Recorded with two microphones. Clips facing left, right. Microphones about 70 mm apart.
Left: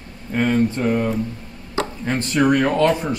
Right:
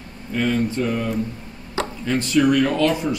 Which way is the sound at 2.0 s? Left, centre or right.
Left.